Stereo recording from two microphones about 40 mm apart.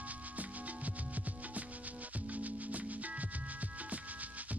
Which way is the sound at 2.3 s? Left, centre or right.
Right.